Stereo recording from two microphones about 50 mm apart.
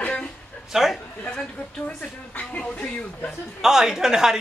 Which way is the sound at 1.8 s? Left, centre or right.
Left.